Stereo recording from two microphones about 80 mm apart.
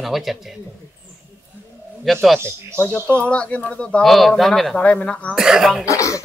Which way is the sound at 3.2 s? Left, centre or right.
Centre.